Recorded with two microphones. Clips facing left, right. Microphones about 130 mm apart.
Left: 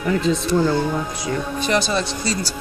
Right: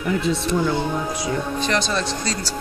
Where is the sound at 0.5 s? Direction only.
10° left (ahead or behind).